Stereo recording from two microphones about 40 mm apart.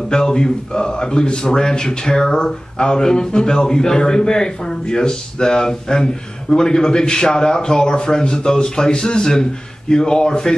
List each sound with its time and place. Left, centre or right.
0.1 s speech: centre